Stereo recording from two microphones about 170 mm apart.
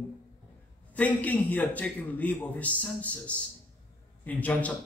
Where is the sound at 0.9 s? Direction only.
10° left (ahead or behind).